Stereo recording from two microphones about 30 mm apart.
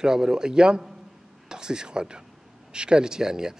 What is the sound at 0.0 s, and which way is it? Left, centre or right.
Speech, right.